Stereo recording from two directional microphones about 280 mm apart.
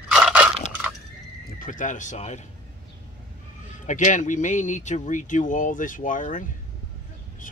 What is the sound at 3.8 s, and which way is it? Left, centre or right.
Speech, left.